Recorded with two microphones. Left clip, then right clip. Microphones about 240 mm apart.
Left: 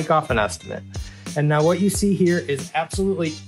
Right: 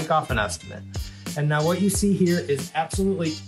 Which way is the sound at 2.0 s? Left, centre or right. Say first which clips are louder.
Left 2 dB; centre.